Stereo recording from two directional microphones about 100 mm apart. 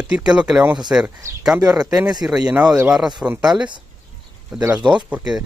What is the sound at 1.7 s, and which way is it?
Speech, 5° right (ahead or behind).